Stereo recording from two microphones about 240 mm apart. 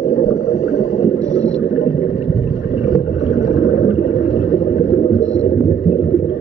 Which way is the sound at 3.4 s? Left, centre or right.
Left.